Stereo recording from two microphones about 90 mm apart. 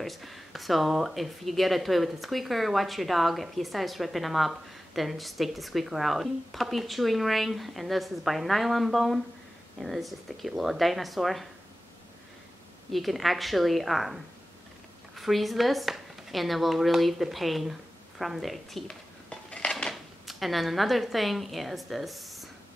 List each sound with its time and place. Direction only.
0.0 s speech: centre (ahead or behind)
12.9 s speech: centre (ahead or behind)
19.2 s dishes: 10° left (ahead or behind)
19.9 s speech: centre (ahead or behind)